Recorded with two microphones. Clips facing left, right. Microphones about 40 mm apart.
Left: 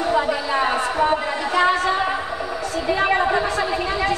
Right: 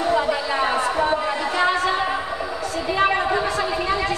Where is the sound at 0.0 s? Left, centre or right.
Centre.